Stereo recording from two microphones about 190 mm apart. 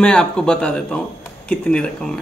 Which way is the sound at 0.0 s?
5° left (ahead or behind).